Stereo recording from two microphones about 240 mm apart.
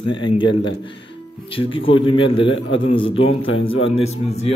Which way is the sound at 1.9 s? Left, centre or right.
Left.